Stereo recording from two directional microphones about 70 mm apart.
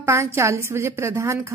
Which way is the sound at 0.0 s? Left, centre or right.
Right.